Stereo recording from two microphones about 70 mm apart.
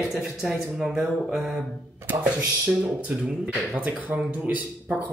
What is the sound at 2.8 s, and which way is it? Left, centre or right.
Speech, right.